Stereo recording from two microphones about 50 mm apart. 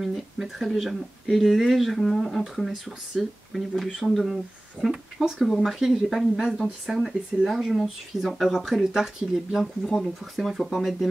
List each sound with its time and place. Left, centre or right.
0.0 s speech: centre